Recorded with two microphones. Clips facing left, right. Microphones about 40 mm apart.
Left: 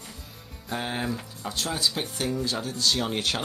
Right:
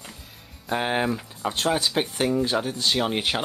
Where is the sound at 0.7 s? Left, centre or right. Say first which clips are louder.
Right 6 dB; right.